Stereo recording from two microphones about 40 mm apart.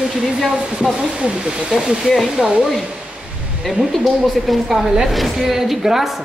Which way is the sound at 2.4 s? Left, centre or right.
Right.